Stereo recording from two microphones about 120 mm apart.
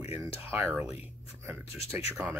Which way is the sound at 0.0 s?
20° right (ahead or behind).